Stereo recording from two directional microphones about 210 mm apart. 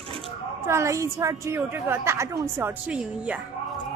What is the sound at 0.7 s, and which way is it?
Speech, 15° right (ahead or behind).